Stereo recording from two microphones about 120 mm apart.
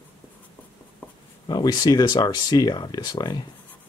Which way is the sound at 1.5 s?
35° left (ahead or behind).